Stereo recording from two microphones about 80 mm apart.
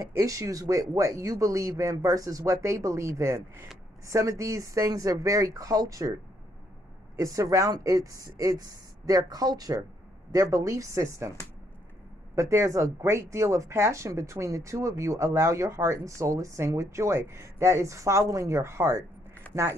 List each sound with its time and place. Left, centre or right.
0.0 s speech: right
7.2 s speech: right
12.4 s speech: right